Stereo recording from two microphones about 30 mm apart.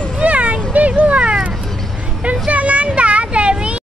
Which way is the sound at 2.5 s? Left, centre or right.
Right.